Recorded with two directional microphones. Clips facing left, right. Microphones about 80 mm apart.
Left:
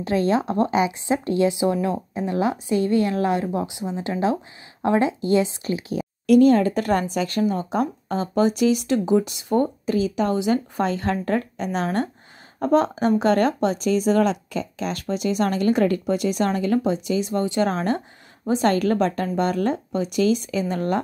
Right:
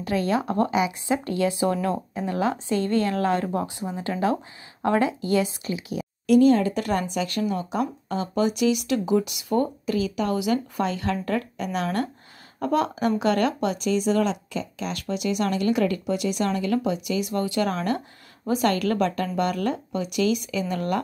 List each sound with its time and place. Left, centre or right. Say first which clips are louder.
0.0 s a woman's voice: left 3 dB; left
6.2 s speech: left 2 dB; left